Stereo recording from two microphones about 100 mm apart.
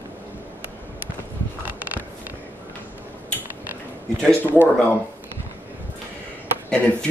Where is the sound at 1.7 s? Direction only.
15° right (ahead or behind).